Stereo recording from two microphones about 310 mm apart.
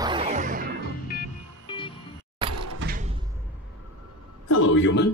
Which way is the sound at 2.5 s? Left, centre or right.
Right.